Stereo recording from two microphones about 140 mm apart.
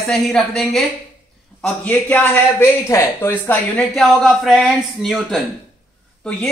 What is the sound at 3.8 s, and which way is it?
A man's voice, centre (ahead or behind).